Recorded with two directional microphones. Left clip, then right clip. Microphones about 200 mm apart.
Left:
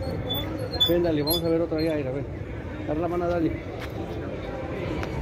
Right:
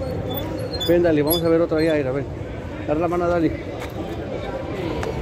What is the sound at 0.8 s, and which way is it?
Speech, 20° right (ahead or behind).